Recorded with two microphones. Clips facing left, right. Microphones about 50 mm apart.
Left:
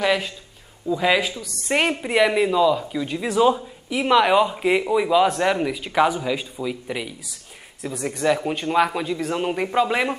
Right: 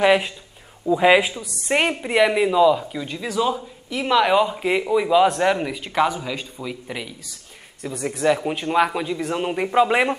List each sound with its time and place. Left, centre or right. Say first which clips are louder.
0.0 s speech: right 4 dB; right
1.7 s speech: even; centre
3.1 s speech: left 4 dB; centre